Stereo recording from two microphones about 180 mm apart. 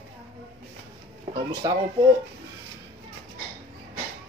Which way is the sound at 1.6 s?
20° right (ahead or behind).